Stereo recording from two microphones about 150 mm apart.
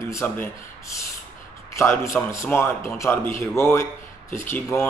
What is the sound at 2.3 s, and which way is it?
A man's voice, 15° left (ahead or behind).